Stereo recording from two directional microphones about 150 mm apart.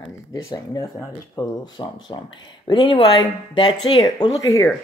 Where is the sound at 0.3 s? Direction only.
20° left (ahead or behind).